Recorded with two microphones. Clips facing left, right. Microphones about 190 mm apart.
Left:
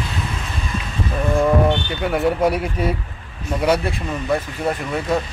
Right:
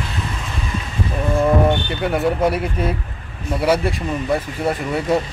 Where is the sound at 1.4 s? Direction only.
Centre (ahead or behind).